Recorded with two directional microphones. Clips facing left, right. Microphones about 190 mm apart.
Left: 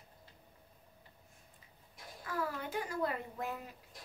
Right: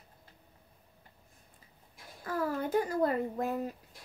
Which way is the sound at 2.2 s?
40° right (ahead or behind).